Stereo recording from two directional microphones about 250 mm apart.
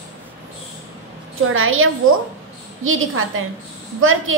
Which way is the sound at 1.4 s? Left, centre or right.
Right.